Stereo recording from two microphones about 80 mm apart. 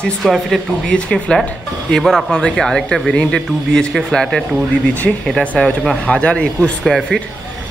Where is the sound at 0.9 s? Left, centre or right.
Centre.